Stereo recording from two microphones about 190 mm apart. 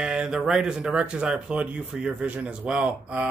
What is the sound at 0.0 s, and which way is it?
Speech, 5° right (ahead or behind).